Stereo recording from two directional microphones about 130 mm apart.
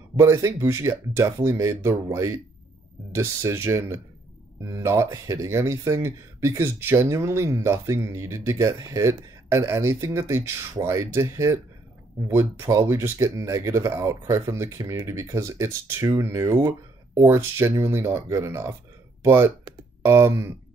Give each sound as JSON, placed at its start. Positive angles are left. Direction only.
{"t": 0.2, "sound": "speech", "side_deg": -20}